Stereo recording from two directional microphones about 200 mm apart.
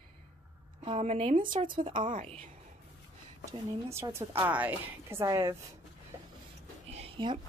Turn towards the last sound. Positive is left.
turn(degrees=-25)  # may be behind; listen again after turning